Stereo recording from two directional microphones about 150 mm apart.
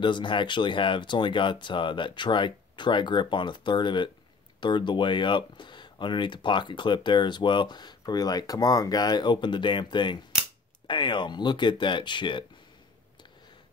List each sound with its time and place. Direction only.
0.0 s speech: 30° left (ahead or behind)